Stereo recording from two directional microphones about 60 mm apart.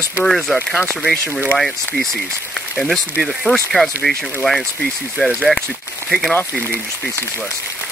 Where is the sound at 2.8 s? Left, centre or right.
Centre.